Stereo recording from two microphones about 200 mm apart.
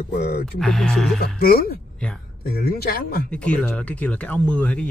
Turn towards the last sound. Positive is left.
turn(degrees=5)  # may be behind; listen again after turning